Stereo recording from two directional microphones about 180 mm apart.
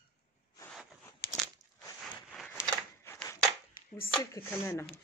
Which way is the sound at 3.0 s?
15° left (ahead or behind).